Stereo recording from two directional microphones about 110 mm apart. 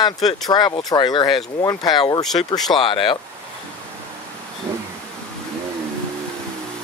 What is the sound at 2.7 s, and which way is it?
Speech, 50° left (ahead or behind).